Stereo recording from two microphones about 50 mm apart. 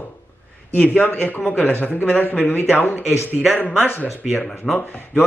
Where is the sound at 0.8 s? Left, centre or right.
Left.